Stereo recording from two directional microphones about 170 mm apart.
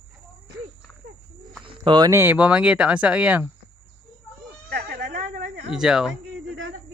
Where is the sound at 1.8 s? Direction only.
25° right (ahead or behind); by 3.5 s 10° right (ahead or behind).